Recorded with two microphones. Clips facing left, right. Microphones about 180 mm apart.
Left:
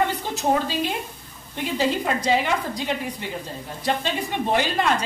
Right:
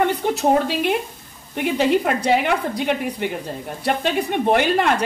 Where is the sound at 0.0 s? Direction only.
65° right (ahead or behind).